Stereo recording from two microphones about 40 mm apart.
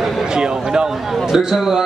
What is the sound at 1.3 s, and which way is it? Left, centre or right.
Speech, centre.